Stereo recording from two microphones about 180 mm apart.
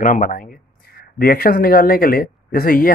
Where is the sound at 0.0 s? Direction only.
50° left (ahead or behind).